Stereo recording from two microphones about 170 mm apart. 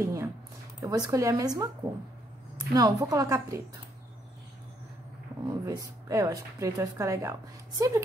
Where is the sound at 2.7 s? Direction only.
20° right (ahead or behind).